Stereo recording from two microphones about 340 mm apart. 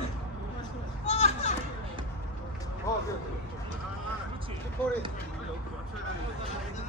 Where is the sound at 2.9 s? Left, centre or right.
Centre.